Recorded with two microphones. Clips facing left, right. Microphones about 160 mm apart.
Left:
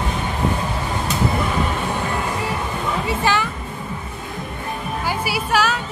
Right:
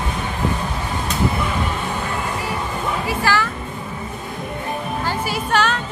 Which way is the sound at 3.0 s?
20° left (ahead or behind).